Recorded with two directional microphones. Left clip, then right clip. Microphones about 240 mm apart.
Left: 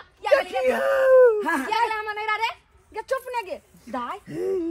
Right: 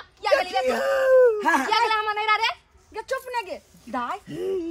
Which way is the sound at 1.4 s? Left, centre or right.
Right.